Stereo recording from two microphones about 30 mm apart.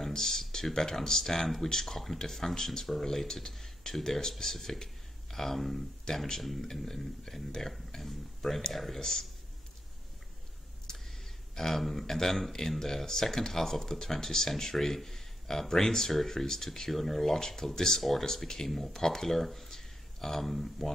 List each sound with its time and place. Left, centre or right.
0.1 s a sound: centre
0.7 s speech: centre
2.9 s speech: centre
3.5 s a sound: centre
4.0 s speech: centre
11.5 s speech: centre